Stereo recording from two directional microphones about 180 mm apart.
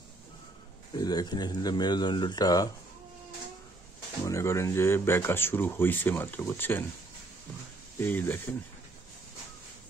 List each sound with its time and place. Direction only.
0.9 s speech: 25° left (ahead or behind)
4.2 s speech: 15° left (ahead or behind)
8.0 s speech: 10° left (ahead or behind)